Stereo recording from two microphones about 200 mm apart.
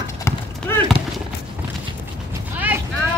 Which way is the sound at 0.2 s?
10° left (ahead or behind).